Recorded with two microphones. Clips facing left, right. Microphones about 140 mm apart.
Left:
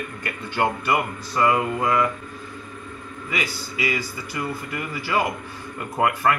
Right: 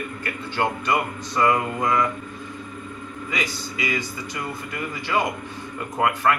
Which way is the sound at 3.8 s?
5° left (ahead or behind).